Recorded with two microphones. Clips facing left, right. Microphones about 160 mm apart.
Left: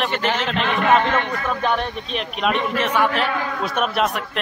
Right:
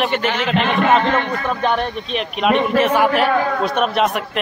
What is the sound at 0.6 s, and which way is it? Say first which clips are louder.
Speech: right 1 dB; 30° right (ahead or behind).